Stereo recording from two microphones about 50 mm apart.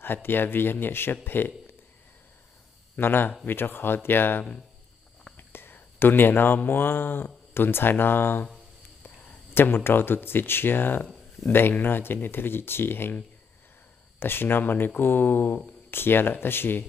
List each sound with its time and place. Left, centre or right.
0.0 s speech: left
3.0 s speech: left
5.5 s speech: left
11.4 s speech: centre
11.7 s speech: left
14.2 s speech: left